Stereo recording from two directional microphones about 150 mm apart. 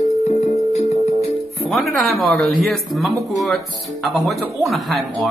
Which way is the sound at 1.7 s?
Centre (ahead or behind).